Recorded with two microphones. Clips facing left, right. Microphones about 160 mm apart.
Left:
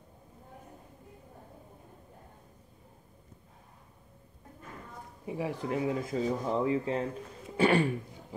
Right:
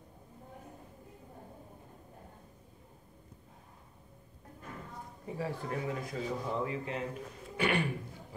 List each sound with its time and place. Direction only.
5.2 s speech: 15° left (ahead or behind); by 7.8 s 30° left (ahead or behind)